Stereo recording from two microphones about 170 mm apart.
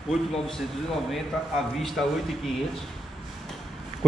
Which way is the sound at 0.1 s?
Centre (ahead or behind).